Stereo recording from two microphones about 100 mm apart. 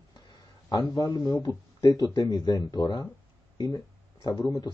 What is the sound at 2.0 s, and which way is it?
Speech, 40° left (ahead or behind).